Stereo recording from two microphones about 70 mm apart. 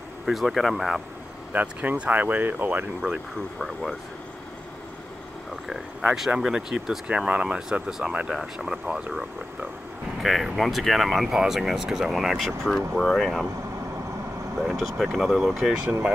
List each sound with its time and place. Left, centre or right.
0.2 s speech: centre
1.5 s speech: right
3.0 s speech: centre
6.3 s speech: centre
10.2 s speech: centre
14.6 s speech: centre